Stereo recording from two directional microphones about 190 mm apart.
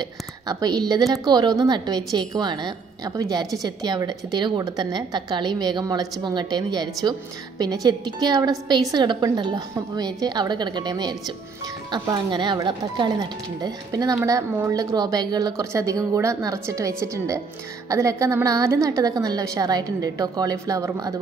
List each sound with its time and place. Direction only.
0.0 s a woman's voice: 20° right (ahead or behind)